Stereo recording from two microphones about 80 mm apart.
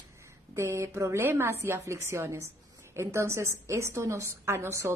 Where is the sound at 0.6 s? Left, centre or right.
Right.